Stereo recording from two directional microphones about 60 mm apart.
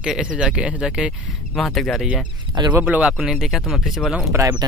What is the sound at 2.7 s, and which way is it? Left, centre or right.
Speech, right.